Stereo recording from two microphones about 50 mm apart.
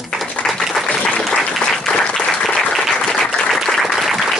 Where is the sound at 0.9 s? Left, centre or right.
Centre.